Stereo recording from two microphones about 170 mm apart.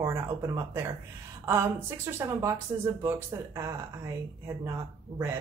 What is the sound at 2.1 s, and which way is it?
A woman's voice, 15° right (ahead or behind).